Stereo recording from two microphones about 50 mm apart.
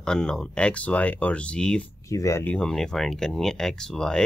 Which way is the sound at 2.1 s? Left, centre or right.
Left.